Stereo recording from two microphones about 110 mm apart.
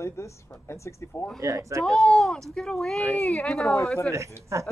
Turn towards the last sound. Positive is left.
turn(degrees=-25)  # may be behind; listen again after turning